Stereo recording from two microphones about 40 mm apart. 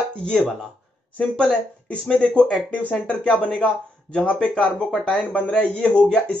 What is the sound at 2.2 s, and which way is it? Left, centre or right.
Speech, left.